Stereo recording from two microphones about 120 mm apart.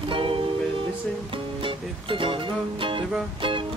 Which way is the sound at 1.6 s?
45° right (ahead or behind).